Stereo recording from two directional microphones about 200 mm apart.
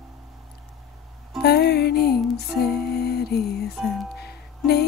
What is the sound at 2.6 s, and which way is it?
Music, centre (ahead or behind).